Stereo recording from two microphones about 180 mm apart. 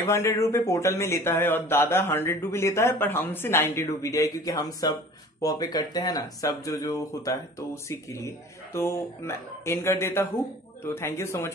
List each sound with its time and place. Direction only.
0.0 s speech: 15° left (ahead or behind)